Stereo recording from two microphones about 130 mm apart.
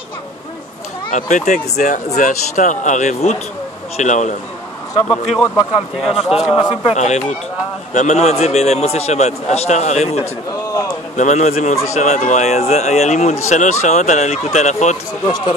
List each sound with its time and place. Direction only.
1.1 s speech: 70° left (ahead or behind)
5.0 s speech: 5° left (ahead or behind)
6.5 s speech: 35° left (ahead or behind)
6.9 s a man's voice: 60° left (ahead or behind)
10.7 s a sound: 25° left (ahead or behind)
11.1 s a man's voice: 65° left (ahead or behind)
15.2 s speech: 35° left (ahead or behind)